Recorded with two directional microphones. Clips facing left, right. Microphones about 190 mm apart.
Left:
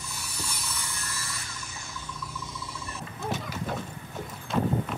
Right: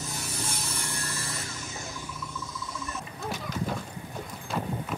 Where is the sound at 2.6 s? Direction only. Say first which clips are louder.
Right 2 dB; 30° left (ahead or behind).